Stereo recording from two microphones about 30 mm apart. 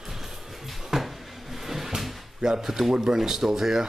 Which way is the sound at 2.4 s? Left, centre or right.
Centre.